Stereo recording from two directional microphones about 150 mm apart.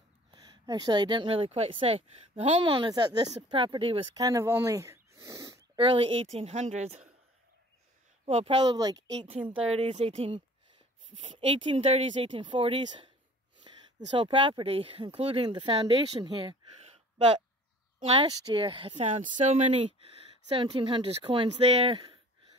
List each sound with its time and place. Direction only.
0.3 s speech: 25° right (ahead or behind)
5.8 s a woman's voice: 35° right (ahead or behind)
8.3 s speech: 40° right (ahead or behind)
8.7 s speech: 25° right (ahead or behind)
9.1 s speech: 40° right (ahead or behind)
17.9 s a woman's voice: 40° right (ahead or behind)
19.4 s a woman's voice: 50° right (ahead or behind)
20.4 s speech: 40° right (ahead or behind)